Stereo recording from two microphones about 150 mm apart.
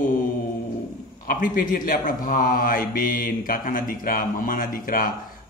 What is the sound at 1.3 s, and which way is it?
Speech, 70° left (ahead or behind).